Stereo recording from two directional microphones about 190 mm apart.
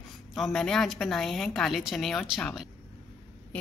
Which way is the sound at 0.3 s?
Centre (ahead or behind).